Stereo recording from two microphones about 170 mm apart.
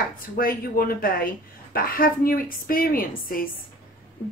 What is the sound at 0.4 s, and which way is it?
Speech, 60° left (ahead or behind).